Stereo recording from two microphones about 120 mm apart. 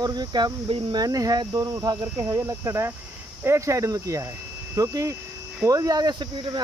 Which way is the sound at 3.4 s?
25° right (ahead or behind).